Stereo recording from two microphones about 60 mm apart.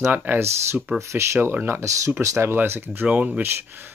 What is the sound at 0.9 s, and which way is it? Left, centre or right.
Speech, right.